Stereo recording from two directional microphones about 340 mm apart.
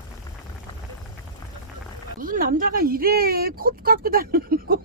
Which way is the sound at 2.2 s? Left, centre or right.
Right.